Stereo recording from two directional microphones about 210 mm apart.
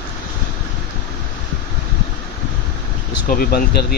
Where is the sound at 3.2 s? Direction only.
45° left (ahead or behind).